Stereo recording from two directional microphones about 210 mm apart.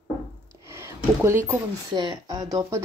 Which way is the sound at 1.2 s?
15° right (ahead or behind).